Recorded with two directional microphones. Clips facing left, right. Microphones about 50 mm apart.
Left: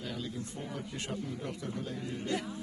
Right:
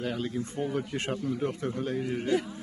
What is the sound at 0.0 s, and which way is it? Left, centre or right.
A man's voice, right.